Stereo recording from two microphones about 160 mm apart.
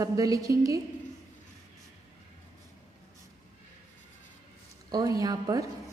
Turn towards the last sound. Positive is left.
turn(degrees=-25)  # may be behind; listen again after turning